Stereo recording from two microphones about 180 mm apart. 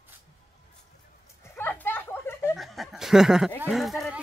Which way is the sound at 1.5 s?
10° left (ahead or behind).